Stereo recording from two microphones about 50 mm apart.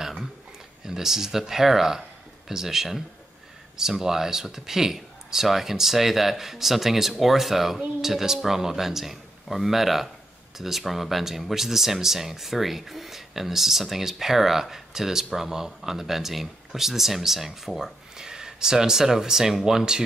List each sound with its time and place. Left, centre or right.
0.8 s speech: centre